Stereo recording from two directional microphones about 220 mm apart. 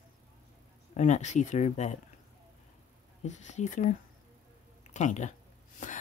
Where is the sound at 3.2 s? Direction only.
30° left (ahead or behind).